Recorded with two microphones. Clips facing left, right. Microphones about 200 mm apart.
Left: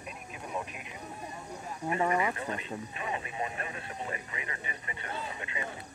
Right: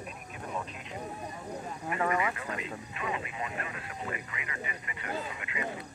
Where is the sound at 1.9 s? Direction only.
30° left (ahead or behind).